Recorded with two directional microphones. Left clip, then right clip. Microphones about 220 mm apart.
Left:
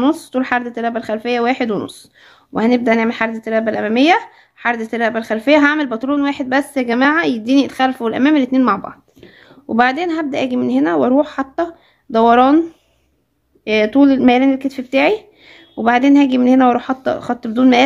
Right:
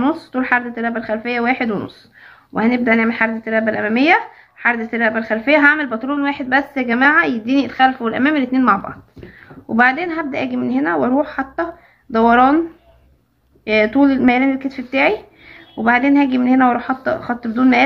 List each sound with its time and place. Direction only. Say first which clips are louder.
0.0 s speech: left 2 dB; 50° left (ahead or behind)
13.7 s speech: left 1 dB; 45° left (ahead or behind)